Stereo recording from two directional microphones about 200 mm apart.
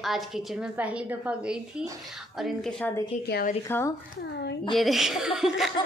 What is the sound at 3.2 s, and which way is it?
Speech, 50° left (ahead or behind).